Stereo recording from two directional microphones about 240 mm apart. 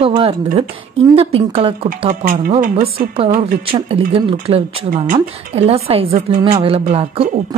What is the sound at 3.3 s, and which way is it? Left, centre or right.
A woman's voice, right.